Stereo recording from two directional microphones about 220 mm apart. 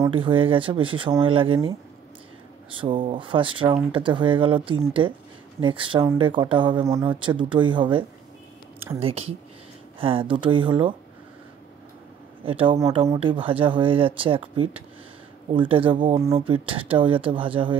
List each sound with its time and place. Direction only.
0.0 s speech: 25° right (ahead or behind)
9.0 s speech: 25° right (ahead or behind)
12.4 s speech: 25° right (ahead or behind)